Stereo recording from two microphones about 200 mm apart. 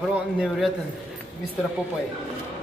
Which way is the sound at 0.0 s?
Centre (ahead or behind).